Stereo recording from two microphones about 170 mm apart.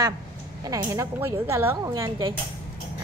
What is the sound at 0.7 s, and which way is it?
A woman's voice, 20° right (ahead or behind).